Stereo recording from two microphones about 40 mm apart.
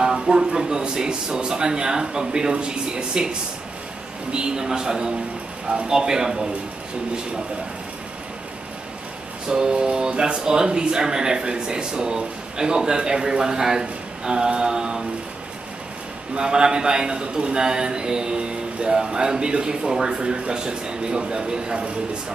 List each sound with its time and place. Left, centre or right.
0.0 s speech: centre
4.3 s a man's voice: right
9.5 s speech: right
16.3 s speech: right